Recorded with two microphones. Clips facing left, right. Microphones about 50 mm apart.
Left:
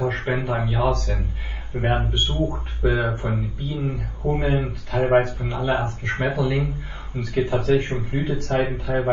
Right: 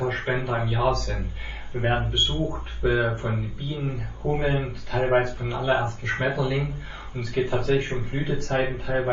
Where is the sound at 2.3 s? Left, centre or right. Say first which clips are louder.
Left 3 dB; left.